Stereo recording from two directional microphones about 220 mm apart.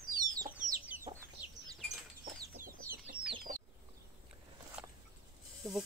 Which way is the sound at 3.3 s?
20° right (ahead or behind).